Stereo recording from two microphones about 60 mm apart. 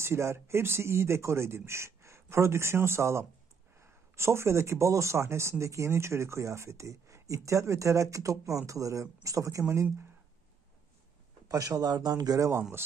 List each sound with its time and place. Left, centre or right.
0.0 s speech: right
11.4 s speech: right